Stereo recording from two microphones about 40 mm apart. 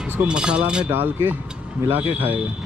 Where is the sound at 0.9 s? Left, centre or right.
Right.